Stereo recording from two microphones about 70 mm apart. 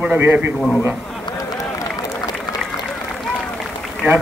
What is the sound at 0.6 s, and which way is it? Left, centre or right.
Speech, centre.